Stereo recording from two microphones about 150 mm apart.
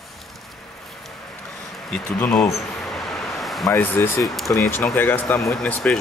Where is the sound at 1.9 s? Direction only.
5° left (ahead or behind).